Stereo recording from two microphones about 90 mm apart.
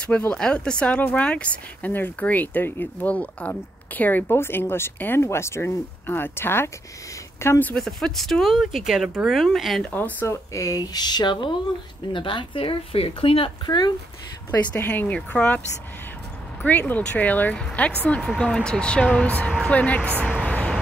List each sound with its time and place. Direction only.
0.0 s speech: 10° left (ahead or behind)
7.7 s speech: 5° left (ahead or behind)
9.8 s speech: 20° left (ahead or behind)
10.2 s speech: 35° left (ahead or behind); by 11.5 s 55° left (ahead or behind)
12.1 s speech: 65° left (ahead or behind); by 13.5 s 90° left
13.7 s speech: 50° left (ahead or behind)
14.7 s speech: 20° left (ahead or behind)
16.6 s speech: 20° left (ahead or behind)
20.4 s vehicle: 10° left (ahead or behind)